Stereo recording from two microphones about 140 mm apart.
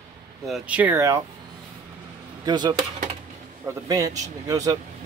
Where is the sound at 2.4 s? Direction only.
30° right (ahead or behind).